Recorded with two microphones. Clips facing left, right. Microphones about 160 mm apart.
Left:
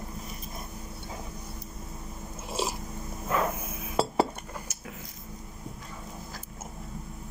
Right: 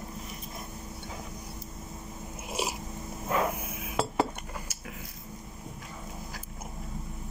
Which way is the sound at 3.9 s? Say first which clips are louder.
Left 3 dB; 35° left (ahead or behind).